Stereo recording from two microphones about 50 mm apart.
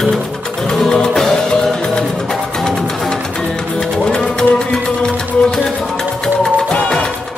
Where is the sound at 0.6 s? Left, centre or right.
Centre.